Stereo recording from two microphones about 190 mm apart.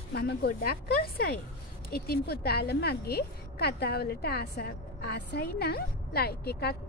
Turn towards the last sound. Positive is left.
turn(degrees=55)  # may be behind; listen again after turning